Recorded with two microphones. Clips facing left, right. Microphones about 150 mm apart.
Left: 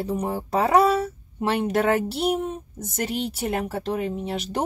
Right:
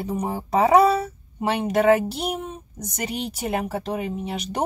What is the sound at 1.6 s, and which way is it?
Speech, centre (ahead or behind).